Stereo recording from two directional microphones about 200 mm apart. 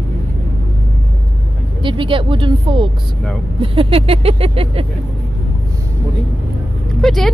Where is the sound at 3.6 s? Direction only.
25° right (ahead or behind).